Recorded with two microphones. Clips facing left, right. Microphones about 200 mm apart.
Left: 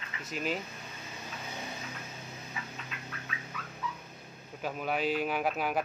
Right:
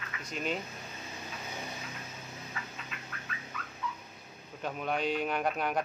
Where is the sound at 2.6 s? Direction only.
15° left (ahead or behind).